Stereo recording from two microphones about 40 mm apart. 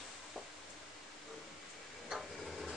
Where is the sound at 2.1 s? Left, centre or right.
Centre.